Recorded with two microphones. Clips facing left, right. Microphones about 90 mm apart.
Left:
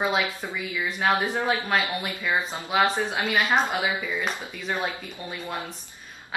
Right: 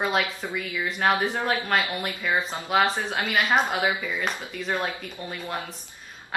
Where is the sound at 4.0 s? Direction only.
15° left (ahead or behind).